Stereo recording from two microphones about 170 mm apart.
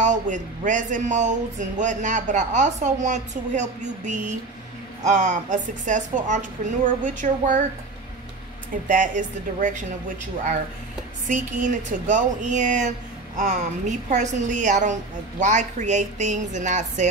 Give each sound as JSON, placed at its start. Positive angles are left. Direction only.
{"t": 0.0, "sound": "speech", "side_deg": -45}
{"t": 8.8, "sound": "speech", "side_deg": -50}
{"t": 11.2, "sound": "speech", "side_deg": -45}